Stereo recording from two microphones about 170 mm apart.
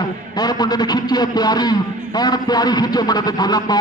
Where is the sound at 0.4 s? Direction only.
25° left (ahead or behind).